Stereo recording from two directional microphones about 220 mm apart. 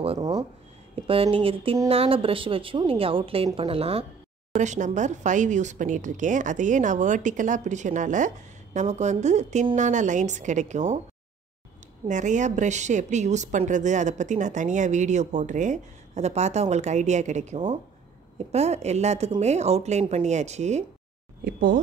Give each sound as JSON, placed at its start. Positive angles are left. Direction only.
{"t": 0.0, "sound": "speech", "side_deg": -20}
{"t": 12.1, "sound": "speech", "side_deg": -35}